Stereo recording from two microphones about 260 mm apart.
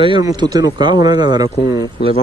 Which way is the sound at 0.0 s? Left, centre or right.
Centre.